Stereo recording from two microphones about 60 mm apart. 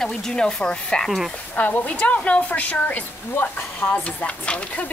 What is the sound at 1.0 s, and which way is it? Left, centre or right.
Speech, centre.